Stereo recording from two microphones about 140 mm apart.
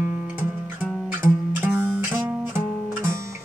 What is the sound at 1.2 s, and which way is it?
Music, 30° left (ahead or behind).